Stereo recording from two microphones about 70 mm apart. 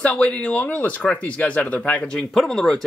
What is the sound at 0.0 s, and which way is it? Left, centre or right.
Speech, centre.